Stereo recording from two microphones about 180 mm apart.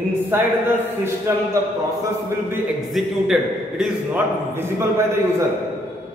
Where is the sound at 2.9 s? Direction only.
Centre (ahead or behind).